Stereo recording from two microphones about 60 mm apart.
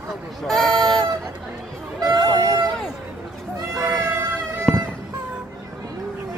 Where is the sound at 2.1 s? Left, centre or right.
Right.